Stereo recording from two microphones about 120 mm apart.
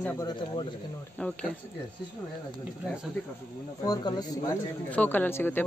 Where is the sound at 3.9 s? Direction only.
35° left (ahead or behind).